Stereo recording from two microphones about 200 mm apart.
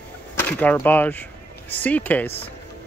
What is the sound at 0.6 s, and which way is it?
Speech, 10° left (ahead or behind).